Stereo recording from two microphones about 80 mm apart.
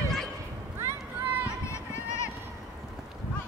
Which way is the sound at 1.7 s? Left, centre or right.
Left.